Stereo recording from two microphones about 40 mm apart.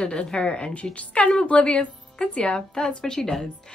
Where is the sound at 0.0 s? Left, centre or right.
Left; by 3.4 s centre.